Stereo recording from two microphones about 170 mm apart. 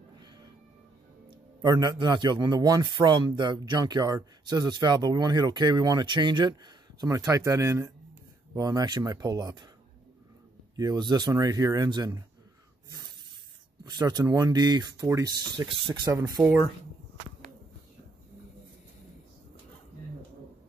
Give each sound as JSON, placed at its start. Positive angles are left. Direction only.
{"t": 1.6, "sound": "a man's voice", "side_deg": -25}
{"t": 10.8, "sound": "a man's voice", "side_deg": -25}
{"t": 13.8, "sound": "a man's voice", "side_deg": -25}